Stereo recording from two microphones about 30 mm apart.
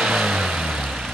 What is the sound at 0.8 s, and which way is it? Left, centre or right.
Vehicle, centre.